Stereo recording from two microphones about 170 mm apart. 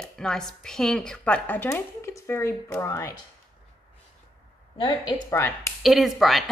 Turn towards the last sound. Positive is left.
turn(degrees=0)  # may be behind; listen again after turning